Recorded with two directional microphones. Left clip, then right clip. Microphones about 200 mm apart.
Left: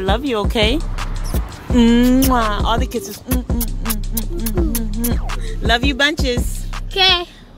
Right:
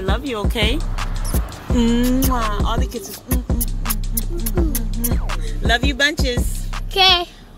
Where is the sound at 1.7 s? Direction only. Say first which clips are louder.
Left 5 dB; 45° left (ahead or behind).